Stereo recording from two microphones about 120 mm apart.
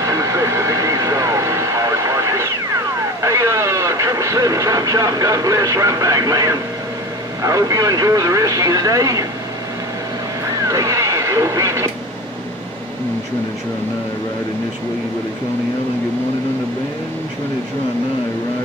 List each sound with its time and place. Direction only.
0.0 s vehicle: 30° right (ahead or behind)
7.4 s speech: 30° right (ahead or behind)
10.7 s vehicle: 25° right (ahead or behind)